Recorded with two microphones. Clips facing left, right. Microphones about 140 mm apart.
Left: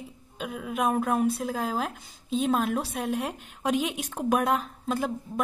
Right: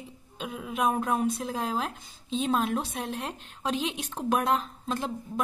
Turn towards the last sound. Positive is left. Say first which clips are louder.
# left 3 dB
turn(degrees=5)  # may be behind; listen again after turning